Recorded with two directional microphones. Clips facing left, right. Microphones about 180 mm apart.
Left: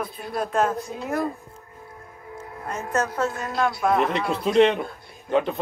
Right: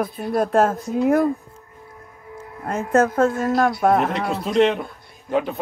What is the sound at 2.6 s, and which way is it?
Speech, 55° right (ahead or behind).